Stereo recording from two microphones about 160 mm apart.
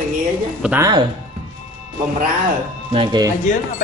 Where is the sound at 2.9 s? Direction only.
30° right (ahead or behind).